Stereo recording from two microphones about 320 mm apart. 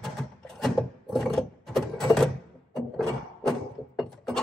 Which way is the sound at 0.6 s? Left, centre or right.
Centre.